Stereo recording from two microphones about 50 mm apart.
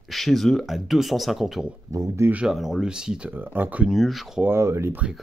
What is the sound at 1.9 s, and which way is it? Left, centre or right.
Speech, right.